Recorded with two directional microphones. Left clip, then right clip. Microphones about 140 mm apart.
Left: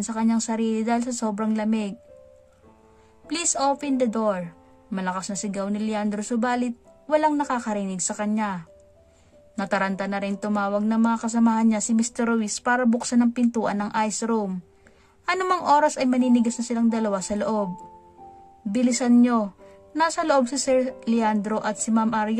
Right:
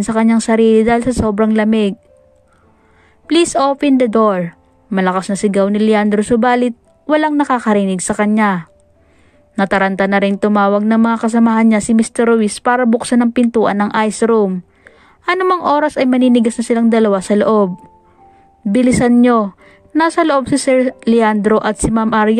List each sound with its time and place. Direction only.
0.0 s speech: 40° right (ahead or behind)
3.3 s a woman's voice: 40° right (ahead or behind)
18.7 s a woman's voice: 40° right (ahead or behind)